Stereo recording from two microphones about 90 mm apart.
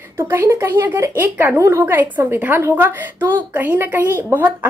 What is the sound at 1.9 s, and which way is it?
A woman's voice, 20° right (ahead or behind).